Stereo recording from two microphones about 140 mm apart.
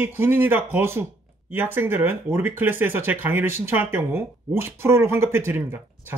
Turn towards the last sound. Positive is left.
turn(degrees=-15)  # may be behind; listen again after turning